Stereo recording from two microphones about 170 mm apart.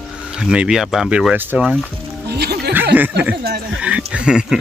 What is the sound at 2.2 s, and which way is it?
Music, 70° right (ahead or behind).